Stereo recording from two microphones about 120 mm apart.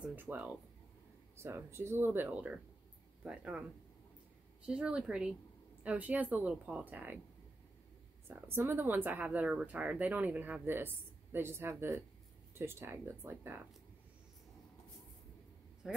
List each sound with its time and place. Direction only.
0.0 s speech: 15° right (ahead or behind)
4.6 s speech: 5° right (ahead or behind)
8.3 s speech: 20° right (ahead or behind)
15.8 s a man's voice: 5° right (ahead or behind)